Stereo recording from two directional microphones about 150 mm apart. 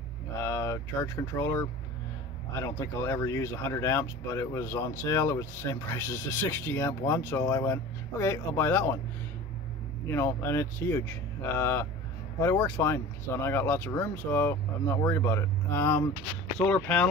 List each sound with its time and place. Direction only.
0.4 s a sound: 20° left (ahead or behind)
2.6 s speech: 20° left (ahead or behind)
10.0 s speech: 15° left (ahead or behind)